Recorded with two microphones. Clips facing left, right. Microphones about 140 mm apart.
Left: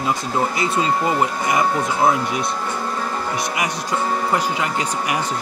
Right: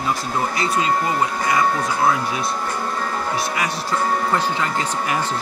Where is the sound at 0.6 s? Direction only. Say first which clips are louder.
Even; 20° left (ahead or behind).